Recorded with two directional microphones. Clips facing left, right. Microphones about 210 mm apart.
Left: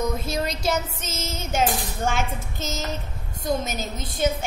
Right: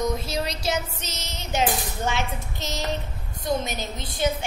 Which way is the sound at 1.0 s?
50° left (ahead or behind).